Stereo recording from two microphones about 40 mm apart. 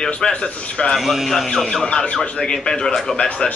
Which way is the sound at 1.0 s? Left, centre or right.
Centre.